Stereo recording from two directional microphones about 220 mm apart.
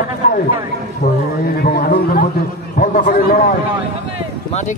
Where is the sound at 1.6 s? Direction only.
45° left (ahead or behind).